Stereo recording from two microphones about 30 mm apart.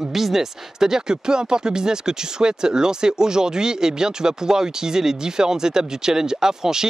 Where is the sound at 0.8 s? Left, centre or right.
Right.